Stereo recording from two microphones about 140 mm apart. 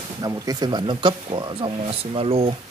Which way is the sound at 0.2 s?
25° right (ahead or behind).